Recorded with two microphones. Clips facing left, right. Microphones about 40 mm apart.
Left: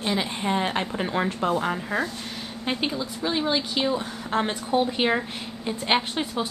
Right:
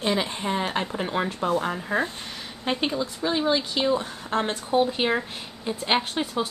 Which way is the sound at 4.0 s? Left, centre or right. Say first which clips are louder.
Left 1 dB; centre.